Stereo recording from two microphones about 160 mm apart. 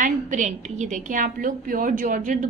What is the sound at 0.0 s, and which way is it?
A woman's voice, 50° right (ahead or behind).